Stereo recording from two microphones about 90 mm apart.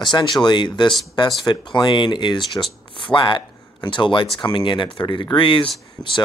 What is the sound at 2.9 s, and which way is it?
Speech, 60° left (ahead or behind).